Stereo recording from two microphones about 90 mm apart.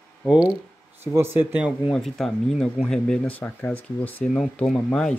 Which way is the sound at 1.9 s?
5° left (ahead or behind).